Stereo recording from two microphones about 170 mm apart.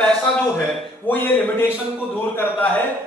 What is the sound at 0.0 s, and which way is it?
A man's voice, 5° left (ahead or behind).